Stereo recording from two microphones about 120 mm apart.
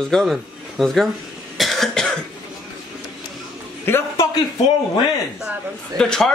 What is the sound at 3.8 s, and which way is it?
Speech, 20° left (ahead or behind).